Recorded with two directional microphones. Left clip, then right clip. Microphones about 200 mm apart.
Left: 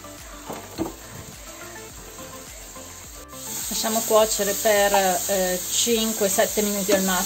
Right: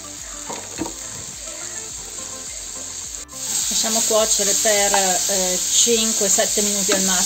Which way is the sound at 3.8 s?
Centre (ahead or behind).